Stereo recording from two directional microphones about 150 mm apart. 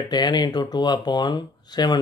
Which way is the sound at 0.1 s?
30° left (ahead or behind).